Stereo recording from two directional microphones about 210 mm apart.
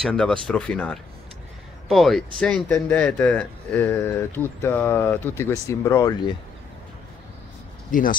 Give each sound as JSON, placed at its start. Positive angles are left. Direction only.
{"t": 0.0, "sound": "speech", "side_deg": 5}
{"t": 7.9, "sound": "speech", "side_deg": 40}